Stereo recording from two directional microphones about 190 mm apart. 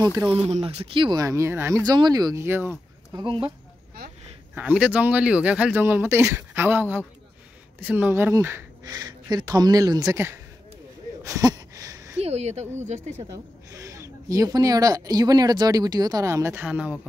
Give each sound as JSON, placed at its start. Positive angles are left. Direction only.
{"t": 0.0, "sound": "speech", "side_deg": -15}
{"t": 0.3, "sound": "speech", "side_deg": -30}
{"t": 3.2, "sound": "speech", "side_deg": -25}
{"t": 4.6, "sound": "speech", "side_deg": -5}
{"t": 11.2, "sound": "a sound", "side_deg": -20}
{"t": 12.2, "sound": "speech", "side_deg": -35}
{"t": 13.3, "sound": "speech", "side_deg": -15}